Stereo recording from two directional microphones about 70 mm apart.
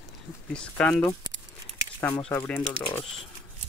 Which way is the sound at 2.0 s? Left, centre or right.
Left.